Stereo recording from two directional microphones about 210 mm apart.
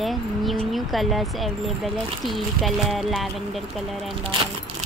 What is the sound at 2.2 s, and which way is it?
Speech, centre (ahead or behind).